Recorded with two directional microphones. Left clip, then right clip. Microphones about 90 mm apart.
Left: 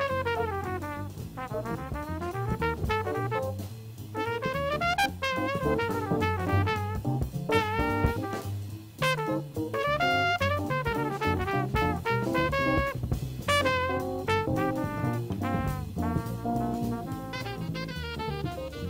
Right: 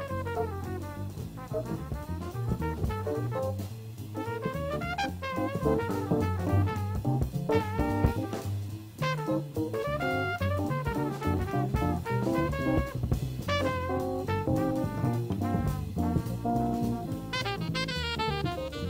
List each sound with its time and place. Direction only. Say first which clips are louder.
0.0 s music: left 5 dB; 50° left (ahead or behind)
2.9 s music: left 5 dB; 50° left (ahead or behind)
9.0 s music: left 3 dB; 50° left (ahead or behind)
17.3 s music: right 4 dB; 35° right (ahead or behind)